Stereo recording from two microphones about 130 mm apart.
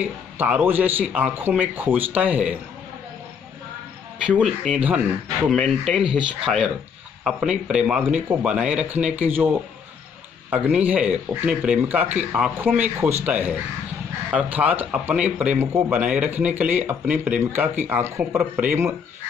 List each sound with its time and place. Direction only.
0.0 s speech: 10° right (ahead or behind)
4.6 s speech: 10° right (ahead or behind)
10.5 s speech: 10° right (ahead or behind)